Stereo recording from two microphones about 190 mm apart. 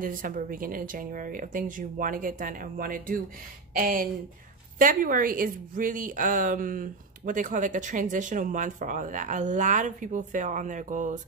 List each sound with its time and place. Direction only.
0.0 s a woman's voice: 45° right (ahead or behind)